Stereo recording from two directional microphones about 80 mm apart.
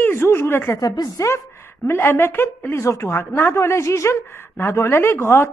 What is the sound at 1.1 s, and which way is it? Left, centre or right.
A woman's voice, left.